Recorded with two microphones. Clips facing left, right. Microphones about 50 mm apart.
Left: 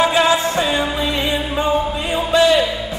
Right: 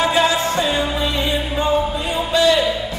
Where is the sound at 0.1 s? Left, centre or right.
Centre.